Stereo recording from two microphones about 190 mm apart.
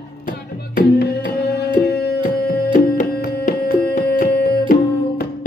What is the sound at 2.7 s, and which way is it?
Music, 45° left (ahead or behind).